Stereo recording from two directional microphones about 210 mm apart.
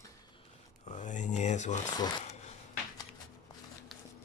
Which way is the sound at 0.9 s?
35° left (ahead or behind).